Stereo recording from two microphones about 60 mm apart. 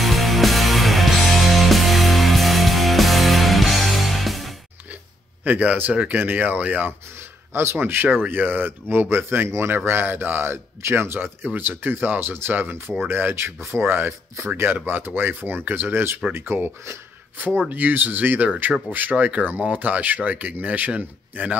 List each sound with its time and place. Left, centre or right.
0.0 s music: centre
5.4 s speech: right
7.5 s speech: right